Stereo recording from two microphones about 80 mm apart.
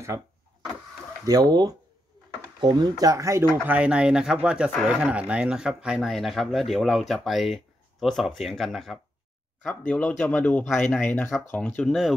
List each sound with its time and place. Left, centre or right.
1.2 s speech: right
3.6 s speech: centre
6.1 s speech: centre
9.6 s speech: centre